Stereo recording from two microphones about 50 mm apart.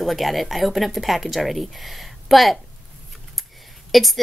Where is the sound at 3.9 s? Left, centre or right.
Centre.